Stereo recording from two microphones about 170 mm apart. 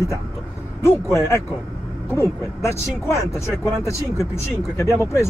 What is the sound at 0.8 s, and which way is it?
Speech, 15° left (ahead or behind).